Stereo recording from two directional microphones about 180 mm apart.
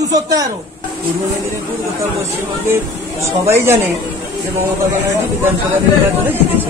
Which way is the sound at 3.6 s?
15° right (ahead or behind).